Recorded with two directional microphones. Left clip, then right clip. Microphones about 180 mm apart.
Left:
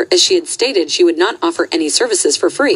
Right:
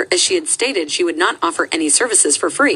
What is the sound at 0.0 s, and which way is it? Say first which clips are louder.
A woman's voice: left 4 dB; 35° left (ahead or behind).